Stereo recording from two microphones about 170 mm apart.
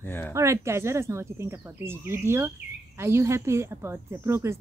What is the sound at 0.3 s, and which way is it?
Speech, 15° right (ahead or behind).